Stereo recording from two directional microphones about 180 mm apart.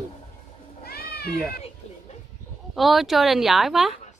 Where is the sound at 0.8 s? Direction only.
60° left (ahead or behind).